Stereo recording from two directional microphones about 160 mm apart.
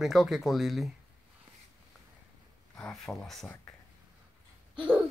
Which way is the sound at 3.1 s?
Centre (ahead or behind).